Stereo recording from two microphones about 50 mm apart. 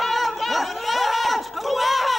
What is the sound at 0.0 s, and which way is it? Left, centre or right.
Chatter, centre.